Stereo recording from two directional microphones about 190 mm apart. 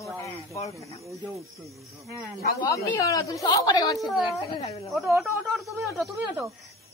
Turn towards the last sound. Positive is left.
turn(degrees=0)  # may be behind; listen again after turning